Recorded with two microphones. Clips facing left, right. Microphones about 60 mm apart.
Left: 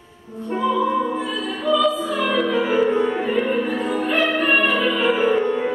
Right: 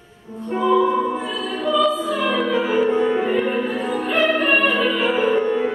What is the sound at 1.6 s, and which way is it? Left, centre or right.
Music, centre.